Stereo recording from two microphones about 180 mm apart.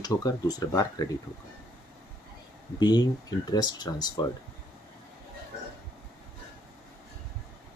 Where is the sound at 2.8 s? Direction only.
25° left (ahead or behind).